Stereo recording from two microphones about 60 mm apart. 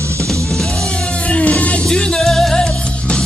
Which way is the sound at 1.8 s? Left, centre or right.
Centre.